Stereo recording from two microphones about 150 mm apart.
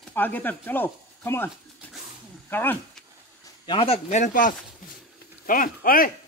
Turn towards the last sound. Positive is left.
turn(degrees=70)  # may be behind; listen again after turning